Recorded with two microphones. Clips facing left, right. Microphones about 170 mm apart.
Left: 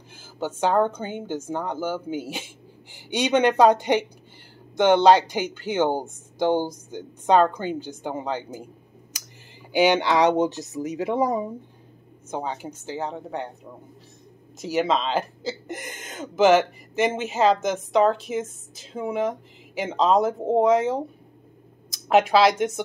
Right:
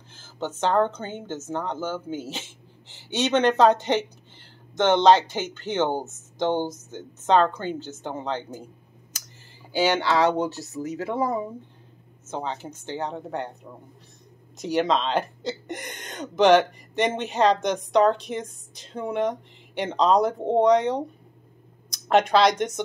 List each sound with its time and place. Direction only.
0.1 s a woman's voice: 10° left (ahead or behind)
9.7 s speech: 15° left (ahead or behind); by 13.5 s centre (ahead or behind)
14.6 s speech: 5° left (ahead or behind)